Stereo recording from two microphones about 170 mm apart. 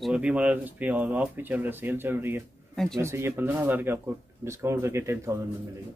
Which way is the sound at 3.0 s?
15° right (ahead or behind).